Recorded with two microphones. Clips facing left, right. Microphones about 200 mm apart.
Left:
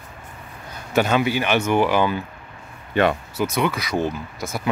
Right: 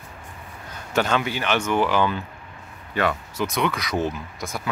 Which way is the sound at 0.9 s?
10° left (ahead or behind).